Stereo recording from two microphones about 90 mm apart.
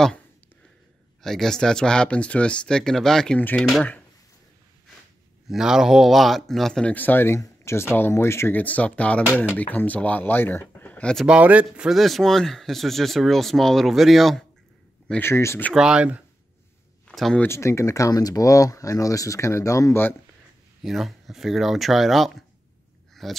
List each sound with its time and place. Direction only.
1.2 s speech: 5° left (ahead or behind)
3.3 s speech: 15° left (ahead or behind)
5.5 s speech: 5° right (ahead or behind); by 7.3 s 20° left (ahead or behind)
7.3 s speech: 35° left (ahead or behind)
8.5 s speech: 15° left (ahead or behind)
11.2 s speech: 15° right (ahead or behind)
11.9 s speech: centre (ahead or behind)
15.1 s speech: 30° left (ahead or behind)
15.7 s speech: 10° right (ahead or behind)
17.1 s speech: centre (ahead or behind)
17.4 s speech: 30° left (ahead or behind)
20.8 s speech: 5° right (ahead or behind)